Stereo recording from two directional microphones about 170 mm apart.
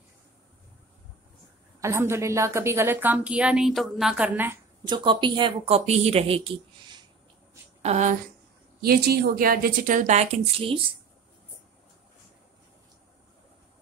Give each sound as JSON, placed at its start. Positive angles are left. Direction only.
{"t": 1.8, "sound": "a woman's voice", "side_deg": -15}
{"t": 4.8, "sound": "speech", "side_deg": -25}
{"t": 7.8, "sound": "a woman's voice", "side_deg": -45}
{"t": 8.8, "sound": "a woman's voice", "side_deg": -65}